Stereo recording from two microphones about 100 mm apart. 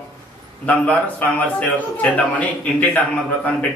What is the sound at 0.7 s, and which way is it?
A man's voice, 15° left (ahead or behind).